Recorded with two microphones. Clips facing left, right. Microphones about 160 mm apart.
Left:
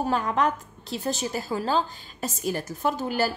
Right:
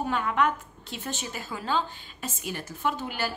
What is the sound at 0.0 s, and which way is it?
A woman's voice, 35° left (ahead or behind).